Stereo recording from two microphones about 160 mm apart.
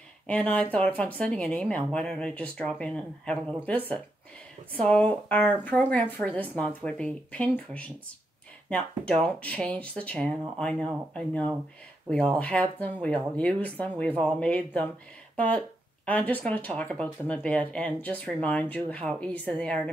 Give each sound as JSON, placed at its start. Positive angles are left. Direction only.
{"t": 0.3, "sound": "speech", "side_deg": 10}